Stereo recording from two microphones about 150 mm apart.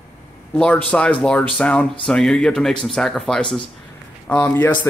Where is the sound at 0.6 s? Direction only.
10° left (ahead or behind).